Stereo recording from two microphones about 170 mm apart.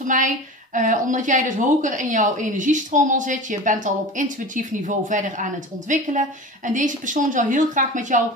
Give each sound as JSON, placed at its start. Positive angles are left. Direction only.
{"t": 0.7, "sound": "speech", "side_deg": -50}